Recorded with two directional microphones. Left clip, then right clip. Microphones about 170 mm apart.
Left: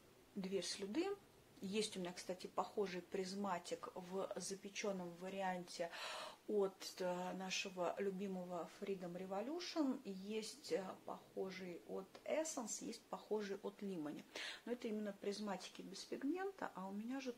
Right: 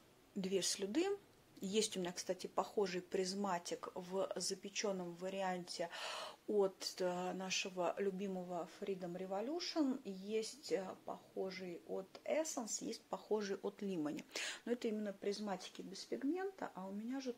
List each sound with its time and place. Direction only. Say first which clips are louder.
0.4 s speech: right 5 dB; 70° right (ahead or behind); by 15.6 s 50° right (ahead or behind)
16.1 s a woman's voice: right 3 dB; 30° right (ahead or behind)